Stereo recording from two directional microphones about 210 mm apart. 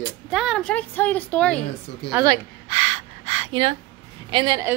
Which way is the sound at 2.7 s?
30° right (ahead or behind).